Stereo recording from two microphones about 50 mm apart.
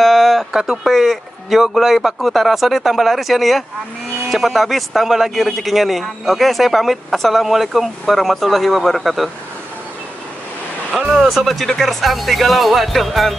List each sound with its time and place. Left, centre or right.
0.0 s speech: centre
11.2 s speech: centre